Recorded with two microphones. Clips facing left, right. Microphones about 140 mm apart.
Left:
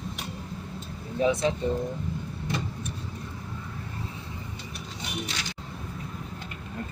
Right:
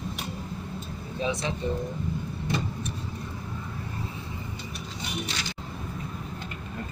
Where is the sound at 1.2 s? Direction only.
50° left (ahead or behind).